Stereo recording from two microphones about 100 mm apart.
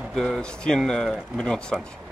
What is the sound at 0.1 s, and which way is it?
Speech, 5° left (ahead or behind).